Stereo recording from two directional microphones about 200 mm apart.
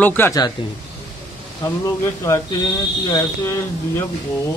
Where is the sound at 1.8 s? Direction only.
15° left (ahead or behind).